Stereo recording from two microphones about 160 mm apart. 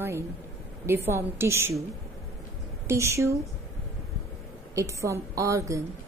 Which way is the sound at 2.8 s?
15° right (ahead or behind).